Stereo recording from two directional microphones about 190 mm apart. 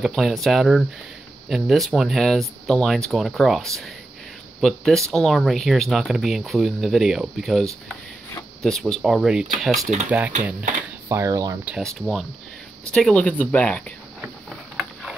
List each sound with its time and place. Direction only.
0.0 s speech: centre (ahead or behind); by 11.5 s 20° right (ahead or behind)
11.6 s speech: centre (ahead or behind)
14.2 s a sound: centre (ahead or behind)